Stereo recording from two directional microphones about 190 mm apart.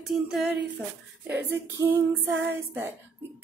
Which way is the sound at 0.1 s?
5° right (ahead or behind).